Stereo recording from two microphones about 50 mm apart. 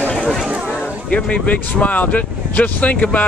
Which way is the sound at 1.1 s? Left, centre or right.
Left.